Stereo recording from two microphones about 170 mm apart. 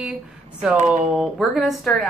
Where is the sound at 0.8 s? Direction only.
45° right (ahead or behind).